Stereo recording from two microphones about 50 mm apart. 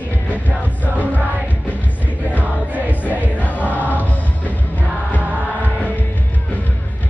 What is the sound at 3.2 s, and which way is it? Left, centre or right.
Music, left.